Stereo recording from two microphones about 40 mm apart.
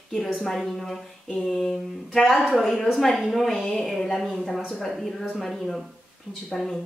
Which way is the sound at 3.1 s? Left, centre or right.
Centre.